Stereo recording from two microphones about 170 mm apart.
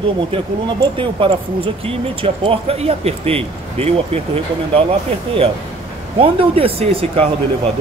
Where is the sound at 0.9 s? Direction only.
30° right (ahead or behind).